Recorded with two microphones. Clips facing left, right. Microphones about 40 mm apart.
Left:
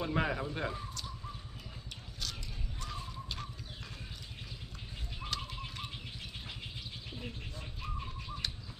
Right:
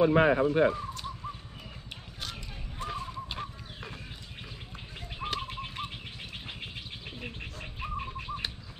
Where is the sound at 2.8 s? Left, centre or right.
Right.